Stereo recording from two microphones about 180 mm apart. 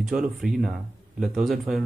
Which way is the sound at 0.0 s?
Centre (ahead or behind).